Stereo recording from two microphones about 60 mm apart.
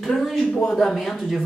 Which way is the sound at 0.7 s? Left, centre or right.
Centre.